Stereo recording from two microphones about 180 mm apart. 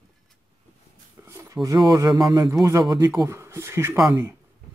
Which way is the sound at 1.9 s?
20° right (ahead or behind).